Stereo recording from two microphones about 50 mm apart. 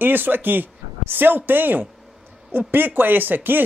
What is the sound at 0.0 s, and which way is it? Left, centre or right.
Speech, right.